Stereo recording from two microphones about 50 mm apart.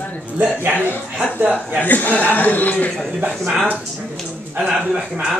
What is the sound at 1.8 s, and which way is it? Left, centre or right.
A man's voice, left.